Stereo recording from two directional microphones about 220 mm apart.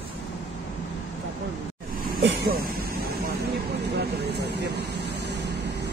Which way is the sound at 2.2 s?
45° right (ahead or behind).